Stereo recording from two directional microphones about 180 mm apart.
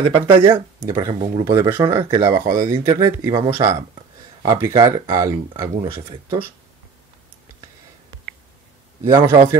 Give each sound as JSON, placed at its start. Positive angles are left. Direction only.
{"t": 0.0, "sound": "speech", "side_deg": -30}
{"t": 0.5, "sound": "speech", "side_deg": -20}
{"t": 4.5, "sound": "speech", "side_deg": -15}
{"t": 9.0, "sound": "a man's voice", "side_deg": -15}